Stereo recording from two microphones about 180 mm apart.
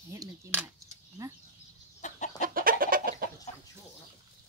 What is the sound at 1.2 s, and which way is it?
Bird, 20° right (ahead or behind).